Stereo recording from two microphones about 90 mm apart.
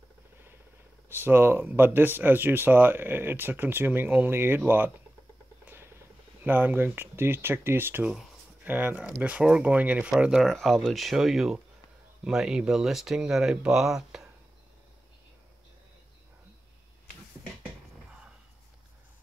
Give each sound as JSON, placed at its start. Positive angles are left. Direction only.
{"t": 1.0, "sound": "speech", "side_deg": -25}
{"t": 6.4, "sound": "speech", "side_deg": -20}
{"t": 10.4, "sound": "speech", "side_deg": 5}